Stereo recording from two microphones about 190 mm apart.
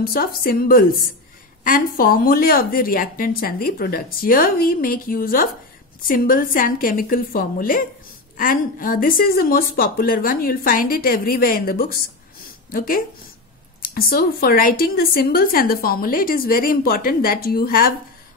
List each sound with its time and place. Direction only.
0.0 s a woman's voice: 50° left (ahead or behind)